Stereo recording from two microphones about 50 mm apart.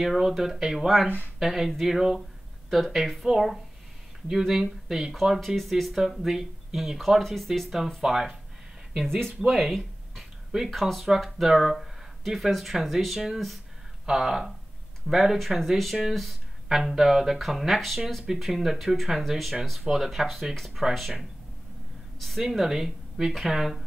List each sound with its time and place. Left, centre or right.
0.0 s speech: centre
8.9 s speech: centre
9.5 s speech: centre
22.4 s speech: centre